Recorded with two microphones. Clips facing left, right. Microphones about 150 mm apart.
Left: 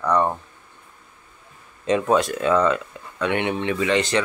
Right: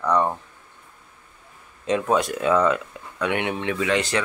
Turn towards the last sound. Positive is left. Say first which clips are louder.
# left 2 dB
turn(degrees=-5)  # may be behind; listen again after turning